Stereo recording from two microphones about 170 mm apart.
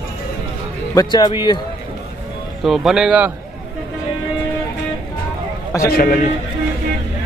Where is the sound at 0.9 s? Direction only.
20° left (ahead or behind).